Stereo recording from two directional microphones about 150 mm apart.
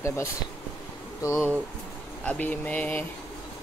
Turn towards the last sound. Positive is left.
turn(degrees=10)  # may be behind; listen again after turning